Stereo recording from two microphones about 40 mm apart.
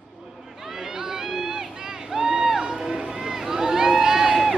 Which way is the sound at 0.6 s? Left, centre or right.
Centre.